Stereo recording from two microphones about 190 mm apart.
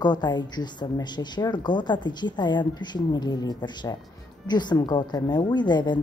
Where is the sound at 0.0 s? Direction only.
20° left (ahead or behind).